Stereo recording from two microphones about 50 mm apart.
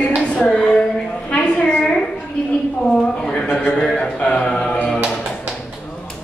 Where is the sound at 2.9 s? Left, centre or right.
Centre.